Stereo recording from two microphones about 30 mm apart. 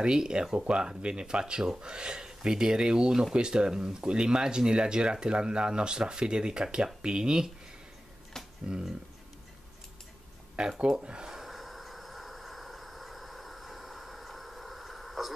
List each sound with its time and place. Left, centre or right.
0.0 s speech: right
1.4 s speech: centre
8.6 s speech: right
10.6 s speech: centre
11.4 s vehicle: centre